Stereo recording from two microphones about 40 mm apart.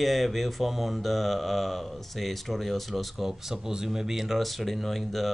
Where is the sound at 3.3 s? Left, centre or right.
Centre.